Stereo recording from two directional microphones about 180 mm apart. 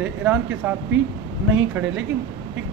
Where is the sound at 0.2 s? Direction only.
10° right (ahead or behind).